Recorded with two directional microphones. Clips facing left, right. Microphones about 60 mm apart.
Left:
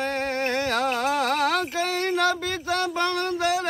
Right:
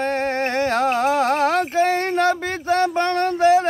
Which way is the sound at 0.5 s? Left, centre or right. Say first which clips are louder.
Right 7 dB; right.